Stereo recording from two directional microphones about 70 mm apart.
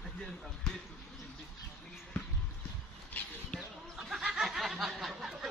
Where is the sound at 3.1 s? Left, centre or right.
Left.